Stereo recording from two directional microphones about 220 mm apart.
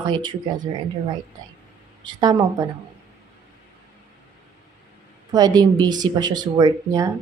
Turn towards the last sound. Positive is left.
turn(degrees=-15)  # may be behind; listen again after turning